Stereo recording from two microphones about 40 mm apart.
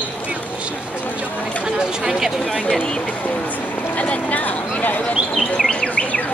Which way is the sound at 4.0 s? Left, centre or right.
Left.